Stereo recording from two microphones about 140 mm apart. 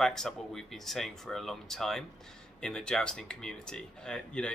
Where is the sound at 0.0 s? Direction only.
5° left (ahead or behind).